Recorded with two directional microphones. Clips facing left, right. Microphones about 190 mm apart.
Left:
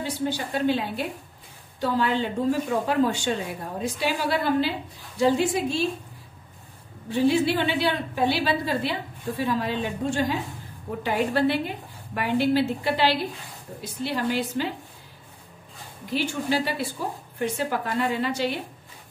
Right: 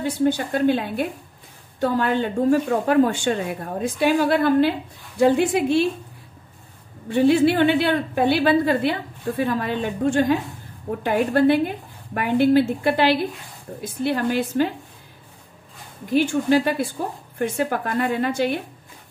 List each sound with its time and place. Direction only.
0.0 s a woman's voice: 50° right (ahead or behind)
7.1 s a woman's voice: 55° right (ahead or behind)
16.1 s a woman's voice: 50° right (ahead or behind)